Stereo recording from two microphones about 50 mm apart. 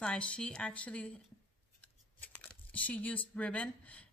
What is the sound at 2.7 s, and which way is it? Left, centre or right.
A woman's voice, left.